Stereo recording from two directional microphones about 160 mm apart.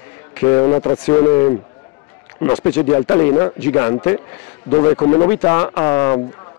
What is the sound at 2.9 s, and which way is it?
Speech, 20° left (ahead or behind).